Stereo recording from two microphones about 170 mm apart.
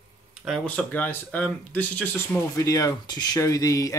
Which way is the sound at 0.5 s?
5° left (ahead or behind).